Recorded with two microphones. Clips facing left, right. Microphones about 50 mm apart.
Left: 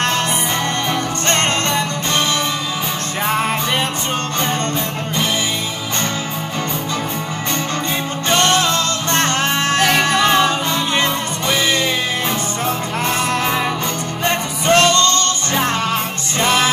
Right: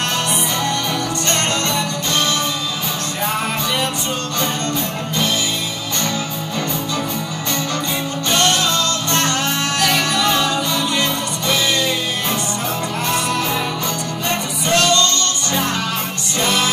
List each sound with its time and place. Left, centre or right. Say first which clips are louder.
1.3 s music: left 3 dB; left
8.3 s music: left 2 dB; left
14.7 s music: left 3 dB; left